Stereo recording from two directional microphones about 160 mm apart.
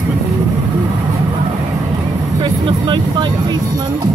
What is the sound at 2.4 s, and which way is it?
Music, 30° right (ahead or behind).